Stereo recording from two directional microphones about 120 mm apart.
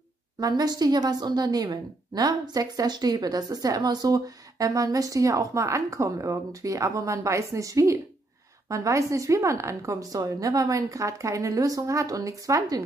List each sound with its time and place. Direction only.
0.4 s a woman's voice: 30° right (ahead or behind)